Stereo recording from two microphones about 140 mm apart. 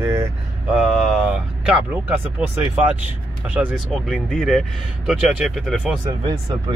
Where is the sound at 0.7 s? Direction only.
Centre (ahead or behind).